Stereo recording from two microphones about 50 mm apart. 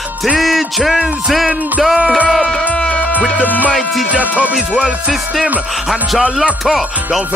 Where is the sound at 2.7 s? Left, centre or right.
Left.